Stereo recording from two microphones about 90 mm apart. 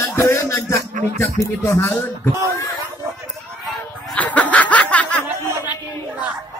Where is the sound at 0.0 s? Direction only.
30° left (ahead or behind).